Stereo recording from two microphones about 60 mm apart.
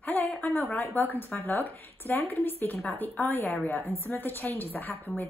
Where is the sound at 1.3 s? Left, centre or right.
Left.